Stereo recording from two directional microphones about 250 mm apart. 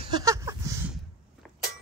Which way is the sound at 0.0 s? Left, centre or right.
Centre.